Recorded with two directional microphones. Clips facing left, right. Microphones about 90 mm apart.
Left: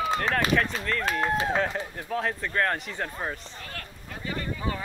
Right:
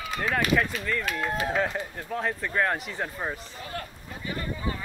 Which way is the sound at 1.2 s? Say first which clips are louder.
Left 3 dB; 35° left (ahead or behind).